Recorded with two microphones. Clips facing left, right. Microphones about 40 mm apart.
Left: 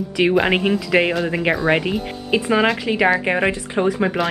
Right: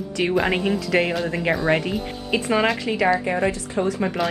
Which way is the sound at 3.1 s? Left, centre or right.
Left.